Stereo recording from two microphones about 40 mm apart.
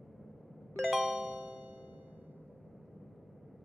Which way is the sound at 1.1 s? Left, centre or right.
Right.